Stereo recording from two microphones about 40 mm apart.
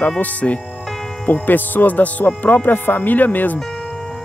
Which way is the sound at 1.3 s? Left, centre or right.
Left.